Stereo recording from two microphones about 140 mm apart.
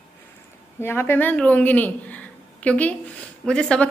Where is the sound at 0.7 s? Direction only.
15° left (ahead or behind).